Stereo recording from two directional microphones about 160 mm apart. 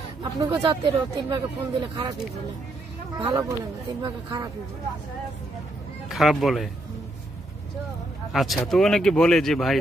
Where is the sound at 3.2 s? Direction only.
20° right (ahead or behind).